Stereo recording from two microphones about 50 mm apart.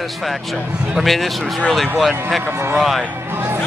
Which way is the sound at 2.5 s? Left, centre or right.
Right.